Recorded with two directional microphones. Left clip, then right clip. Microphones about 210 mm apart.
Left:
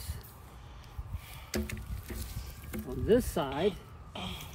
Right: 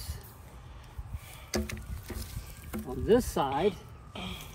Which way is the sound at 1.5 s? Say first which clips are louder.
Right 3 dB; 20° right (ahead or behind).